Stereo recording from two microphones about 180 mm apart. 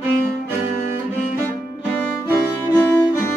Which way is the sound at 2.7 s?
10° left (ahead or behind).